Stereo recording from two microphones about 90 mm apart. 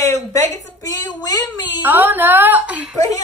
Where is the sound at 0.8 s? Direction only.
45° left (ahead or behind).